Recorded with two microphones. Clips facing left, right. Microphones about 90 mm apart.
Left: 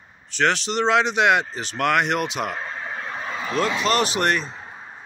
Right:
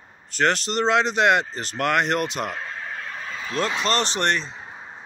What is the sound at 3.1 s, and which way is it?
Vehicle, 40° left (ahead or behind).